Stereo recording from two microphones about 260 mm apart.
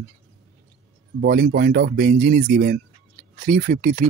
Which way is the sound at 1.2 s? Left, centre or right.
Right.